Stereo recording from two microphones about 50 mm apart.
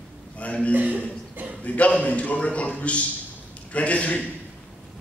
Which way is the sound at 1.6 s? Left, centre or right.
Left.